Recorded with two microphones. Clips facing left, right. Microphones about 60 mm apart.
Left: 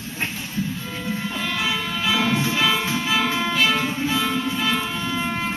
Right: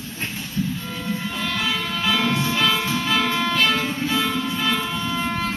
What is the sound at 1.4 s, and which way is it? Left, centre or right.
Music, centre.